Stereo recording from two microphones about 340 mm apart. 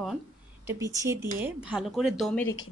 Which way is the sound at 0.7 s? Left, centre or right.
Centre.